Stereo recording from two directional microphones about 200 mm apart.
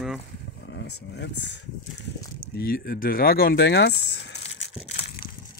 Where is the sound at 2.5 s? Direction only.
50° left (ahead or behind).